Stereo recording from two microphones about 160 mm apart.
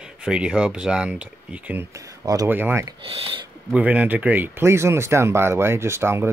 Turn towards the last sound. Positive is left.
turn(degrees=-15)  # may be behind; listen again after turning